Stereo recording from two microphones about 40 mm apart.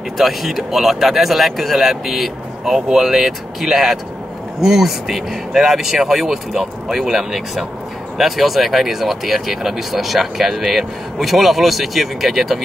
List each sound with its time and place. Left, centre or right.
0.2 s speech: centre